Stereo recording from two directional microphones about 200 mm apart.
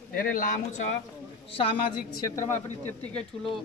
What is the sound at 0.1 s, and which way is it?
Speech, 45° left (ahead or behind).